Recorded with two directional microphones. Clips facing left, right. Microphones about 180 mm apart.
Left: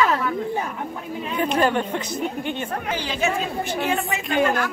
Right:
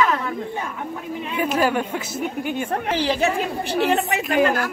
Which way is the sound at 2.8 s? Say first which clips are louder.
Right 4 dB; 30° right (ahead or behind).